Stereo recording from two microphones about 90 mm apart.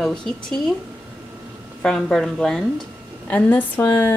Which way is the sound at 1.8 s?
5° left (ahead or behind).